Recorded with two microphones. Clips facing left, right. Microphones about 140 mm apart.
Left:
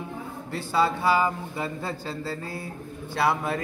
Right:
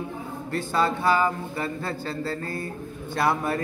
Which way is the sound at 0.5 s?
5° left (ahead or behind).